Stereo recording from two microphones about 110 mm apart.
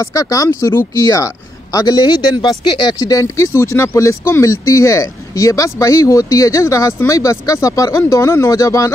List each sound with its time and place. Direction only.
0.0 s speech: 30° left (ahead or behind)